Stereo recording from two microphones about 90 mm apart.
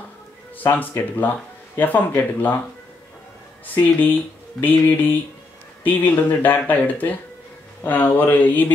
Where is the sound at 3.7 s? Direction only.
20° left (ahead or behind).